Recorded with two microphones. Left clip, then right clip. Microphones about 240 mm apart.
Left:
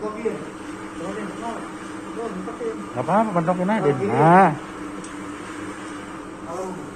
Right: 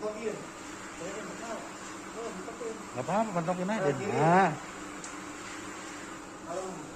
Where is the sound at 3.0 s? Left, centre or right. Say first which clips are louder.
Left 10 dB; centre.